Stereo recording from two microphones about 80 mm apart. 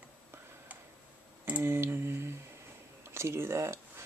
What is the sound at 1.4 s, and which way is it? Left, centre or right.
Speech, right.